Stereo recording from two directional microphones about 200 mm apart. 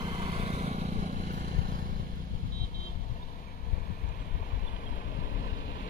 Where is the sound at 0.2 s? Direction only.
30° right (ahead or behind).